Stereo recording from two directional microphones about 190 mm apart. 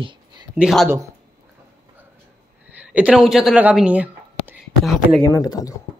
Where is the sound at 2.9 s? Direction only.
5° right (ahead or behind).